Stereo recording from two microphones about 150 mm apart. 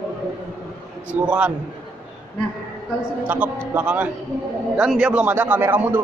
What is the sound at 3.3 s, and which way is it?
A man's voice, 10° right (ahead or behind).